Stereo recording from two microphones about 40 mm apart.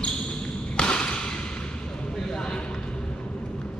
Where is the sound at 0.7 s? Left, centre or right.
Left.